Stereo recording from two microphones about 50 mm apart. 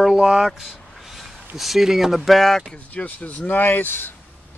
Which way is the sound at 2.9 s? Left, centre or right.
Left.